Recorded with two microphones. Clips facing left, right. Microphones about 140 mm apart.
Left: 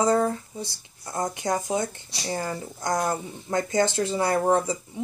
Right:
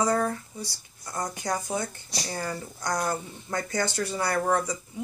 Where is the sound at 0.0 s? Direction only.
25° left (ahead or behind).